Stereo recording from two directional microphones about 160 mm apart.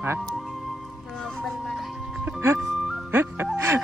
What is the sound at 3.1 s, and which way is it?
Music, 15° right (ahead or behind).